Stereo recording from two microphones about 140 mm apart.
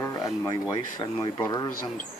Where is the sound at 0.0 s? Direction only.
25° left (ahead or behind).